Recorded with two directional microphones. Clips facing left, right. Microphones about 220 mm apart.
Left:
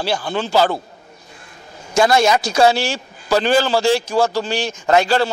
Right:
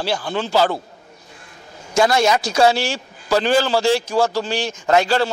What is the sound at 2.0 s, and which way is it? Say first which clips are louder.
A man's voice: left 3 dB; 15° left (ahead or behind).